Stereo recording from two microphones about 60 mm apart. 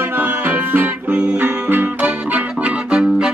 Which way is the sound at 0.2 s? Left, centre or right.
Right.